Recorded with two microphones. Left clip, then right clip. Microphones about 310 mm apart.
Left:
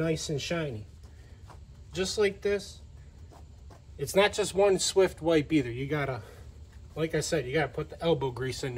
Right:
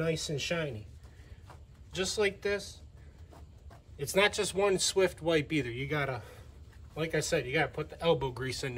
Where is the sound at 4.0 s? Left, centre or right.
Centre.